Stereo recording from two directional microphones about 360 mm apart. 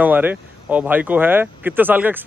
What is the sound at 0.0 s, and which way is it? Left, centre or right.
Speech, centre.